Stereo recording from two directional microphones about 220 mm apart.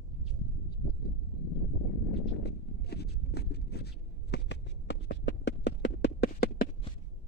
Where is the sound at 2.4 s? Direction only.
50° left (ahead or behind).